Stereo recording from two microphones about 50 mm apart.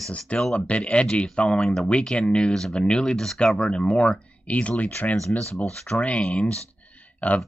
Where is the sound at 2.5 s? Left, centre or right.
Centre.